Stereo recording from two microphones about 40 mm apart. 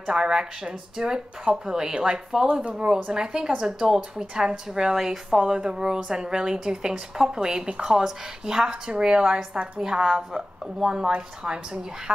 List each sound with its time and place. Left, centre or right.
0.0 s a woman's voice: centre
4.9 s a woman's voice: centre